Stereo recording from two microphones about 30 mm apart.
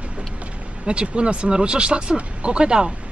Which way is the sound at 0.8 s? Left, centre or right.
Right.